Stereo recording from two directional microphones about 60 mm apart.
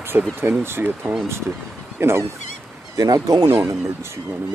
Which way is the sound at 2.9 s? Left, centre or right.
Right.